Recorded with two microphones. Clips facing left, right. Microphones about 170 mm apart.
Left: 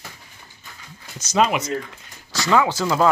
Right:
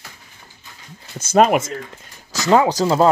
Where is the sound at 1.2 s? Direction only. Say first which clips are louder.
Right 5 dB; 50° right (ahead or behind).